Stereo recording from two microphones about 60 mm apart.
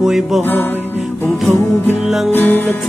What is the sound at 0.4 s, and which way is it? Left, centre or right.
Music, left.